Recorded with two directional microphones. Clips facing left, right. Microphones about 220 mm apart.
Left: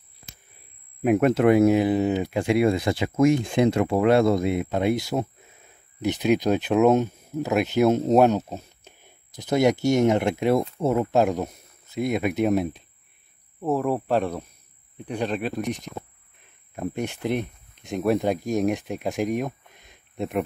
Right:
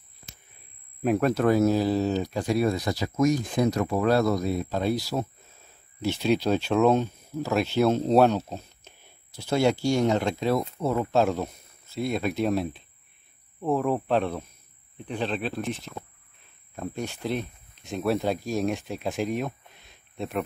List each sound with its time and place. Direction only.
1.0 s speech: 20° left (ahead or behind)
13.8 s speech: 10° left (ahead or behind)